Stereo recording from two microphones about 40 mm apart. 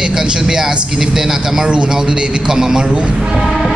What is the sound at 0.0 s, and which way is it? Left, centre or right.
A man's voice, centre.